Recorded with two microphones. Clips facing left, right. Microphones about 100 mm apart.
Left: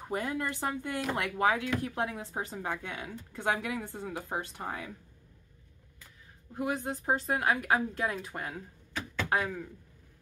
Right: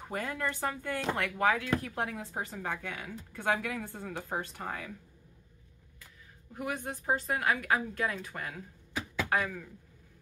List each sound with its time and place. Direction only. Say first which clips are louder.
0.1 s speech: left 2 dB; 20° left (ahead or behind)
6.5 s speech: left 4 dB; 25° left (ahead or behind)